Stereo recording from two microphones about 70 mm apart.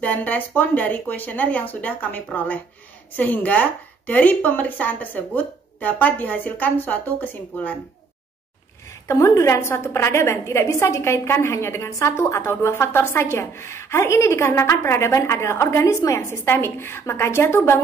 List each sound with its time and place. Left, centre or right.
0.0 s speech: left
9.0 s a woman's voice: left
16.0 s a woman's voice: left
16.3 s a woman's voice: left